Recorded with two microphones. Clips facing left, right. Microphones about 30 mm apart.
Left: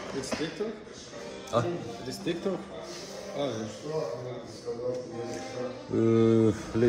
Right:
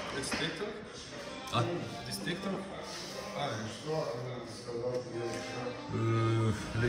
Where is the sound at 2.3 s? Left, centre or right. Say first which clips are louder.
Left 7 dB; centre.